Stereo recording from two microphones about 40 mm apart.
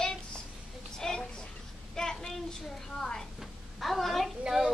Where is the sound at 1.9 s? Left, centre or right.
Centre.